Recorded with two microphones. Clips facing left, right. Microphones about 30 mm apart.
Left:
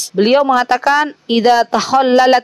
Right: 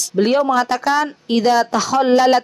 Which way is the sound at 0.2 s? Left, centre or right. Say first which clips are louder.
Left 4 dB; left.